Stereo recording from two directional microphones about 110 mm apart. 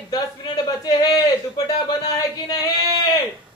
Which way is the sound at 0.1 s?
40° left (ahead or behind).